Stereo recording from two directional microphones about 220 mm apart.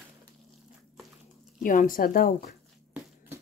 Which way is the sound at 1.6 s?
40° left (ahead or behind).